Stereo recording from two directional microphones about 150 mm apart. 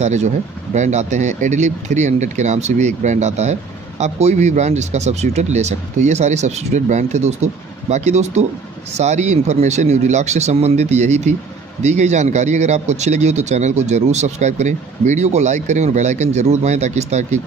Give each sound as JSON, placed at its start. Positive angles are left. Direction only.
{"t": 0.0, "sound": "a man's voice", "side_deg": -50}